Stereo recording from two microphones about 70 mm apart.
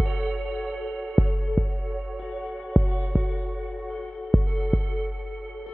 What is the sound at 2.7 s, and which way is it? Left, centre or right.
Music, centre.